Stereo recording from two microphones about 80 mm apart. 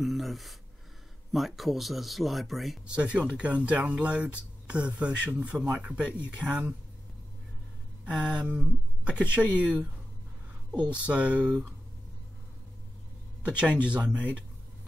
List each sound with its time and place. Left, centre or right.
0.0 s a sound: centre
1.3 s speech: centre
2.9 s speech: centre
8.0 s speech: centre
13.5 s speech: centre